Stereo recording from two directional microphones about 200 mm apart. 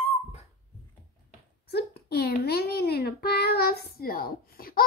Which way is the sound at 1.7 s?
55° left (ahead or behind).